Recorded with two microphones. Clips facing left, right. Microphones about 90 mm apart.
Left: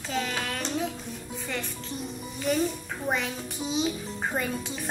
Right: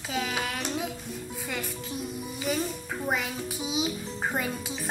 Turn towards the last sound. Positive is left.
turn(degrees=-5)  # may be behind; listen again after turning